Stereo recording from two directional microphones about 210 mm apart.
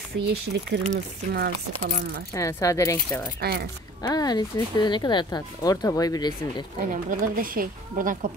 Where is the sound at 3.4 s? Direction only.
50° right (ahead or behind).